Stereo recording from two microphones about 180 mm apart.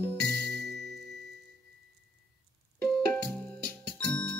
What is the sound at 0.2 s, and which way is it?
Music, 65° right (ahead or behind).